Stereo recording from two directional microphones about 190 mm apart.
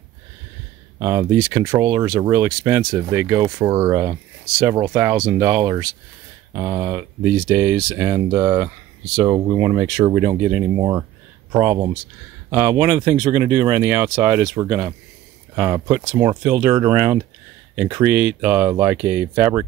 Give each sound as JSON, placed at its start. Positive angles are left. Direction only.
{"t": 0.9, "sound": "speech", "side_deg": -15}